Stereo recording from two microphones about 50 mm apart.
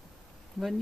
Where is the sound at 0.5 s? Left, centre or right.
Centre.